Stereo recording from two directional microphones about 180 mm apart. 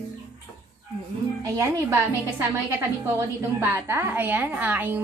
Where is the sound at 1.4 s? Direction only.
15° right (ahead or behind).